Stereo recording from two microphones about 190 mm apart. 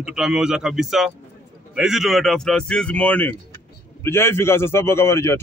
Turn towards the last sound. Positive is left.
turn(degrees=15)  # may be behind; listen again after turning